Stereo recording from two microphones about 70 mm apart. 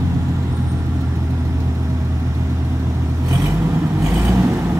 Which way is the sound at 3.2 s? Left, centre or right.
Right.